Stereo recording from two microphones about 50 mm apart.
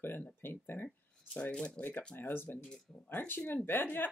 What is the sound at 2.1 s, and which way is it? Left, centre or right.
Speech, left.